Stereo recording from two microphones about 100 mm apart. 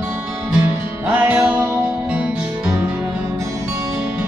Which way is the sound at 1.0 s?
15° right (ahead or behind).